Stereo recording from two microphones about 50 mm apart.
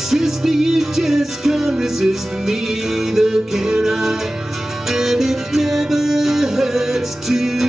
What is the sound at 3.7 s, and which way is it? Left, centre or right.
Music, centre.